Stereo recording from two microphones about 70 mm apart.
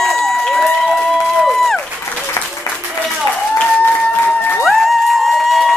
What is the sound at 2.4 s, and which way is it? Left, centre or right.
Applause, left.